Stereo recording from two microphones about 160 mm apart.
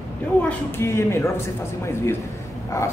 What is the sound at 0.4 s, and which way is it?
Speech, 10° left (ahead or behind).